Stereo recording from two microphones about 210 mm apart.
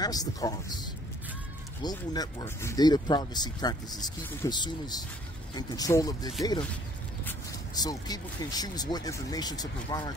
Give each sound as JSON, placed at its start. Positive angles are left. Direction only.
{"t": 0.0, "sound": "speech", "side_deg": 15}